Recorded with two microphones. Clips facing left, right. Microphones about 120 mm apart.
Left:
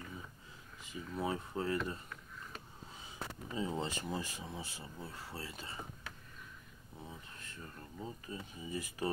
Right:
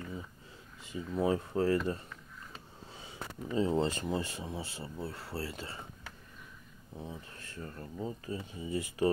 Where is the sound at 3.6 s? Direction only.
35° right (ahead or behind).